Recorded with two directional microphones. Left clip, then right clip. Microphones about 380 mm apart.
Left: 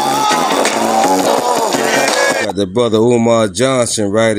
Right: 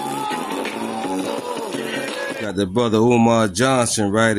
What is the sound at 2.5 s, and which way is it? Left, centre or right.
Speech, right.